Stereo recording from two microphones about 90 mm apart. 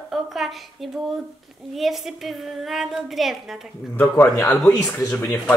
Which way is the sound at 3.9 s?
20° left (ahead or behind).